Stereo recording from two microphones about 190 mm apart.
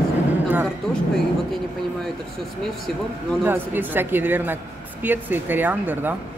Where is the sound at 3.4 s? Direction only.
10° right (ahead or behind).